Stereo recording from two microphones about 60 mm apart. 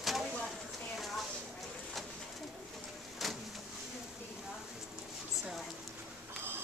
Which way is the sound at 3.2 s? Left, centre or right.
Centre.